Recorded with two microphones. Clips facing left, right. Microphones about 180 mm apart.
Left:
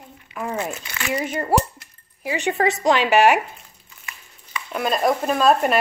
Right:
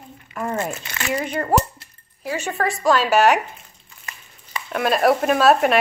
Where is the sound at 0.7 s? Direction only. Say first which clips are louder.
Right 1 dB; 45° right (ahead or behind).